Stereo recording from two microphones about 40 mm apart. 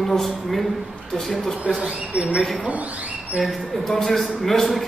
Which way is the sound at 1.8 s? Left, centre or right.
Right.